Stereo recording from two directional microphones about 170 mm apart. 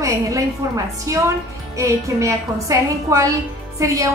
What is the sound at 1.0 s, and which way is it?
A woman's voice, 20° right (ahead or behind).